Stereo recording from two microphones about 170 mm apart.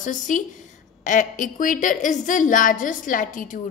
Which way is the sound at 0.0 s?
50° left (ahead or behind).